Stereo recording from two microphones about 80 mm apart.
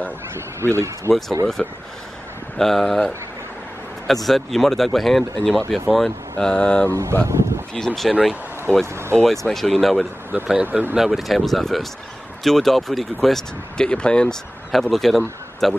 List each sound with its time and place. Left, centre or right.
0.6 s speech: right
1.6 s speech: centre
4.1 s speech: centre
6.9 s speech: right
7.7 s speech: centre
8.1 s speech: centre
8.7 s speech: centre
9.1 s speech: centre
10.3 s speech: centre
11.0 s speech: centre